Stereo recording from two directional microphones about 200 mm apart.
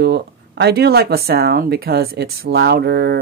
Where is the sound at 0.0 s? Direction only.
55° right (ahead or behind).